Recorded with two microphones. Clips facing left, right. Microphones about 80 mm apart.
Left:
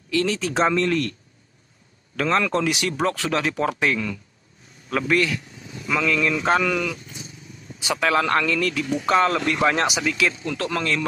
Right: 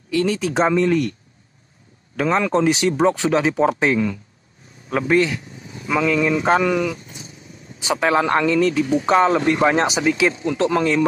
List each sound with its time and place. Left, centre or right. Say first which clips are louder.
0.1 s speech: right 3 dB; centre
2.1 s a man's voice: right 3 dB; centre
7.8 s speech: right 3 dB; right